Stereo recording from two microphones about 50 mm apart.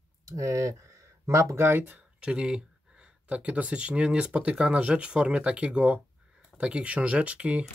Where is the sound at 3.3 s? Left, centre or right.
Right.